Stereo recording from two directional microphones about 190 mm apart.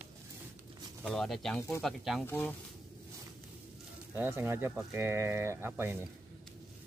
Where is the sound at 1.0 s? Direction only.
Centre (ahead or behind).